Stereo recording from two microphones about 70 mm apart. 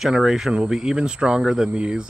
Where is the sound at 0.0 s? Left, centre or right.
Centre.